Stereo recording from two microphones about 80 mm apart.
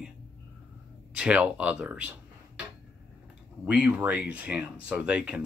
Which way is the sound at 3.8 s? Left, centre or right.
Centre.